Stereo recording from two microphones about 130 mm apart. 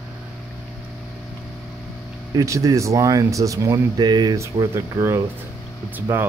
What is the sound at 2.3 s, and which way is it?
Speech, 25° right (ahead or behind).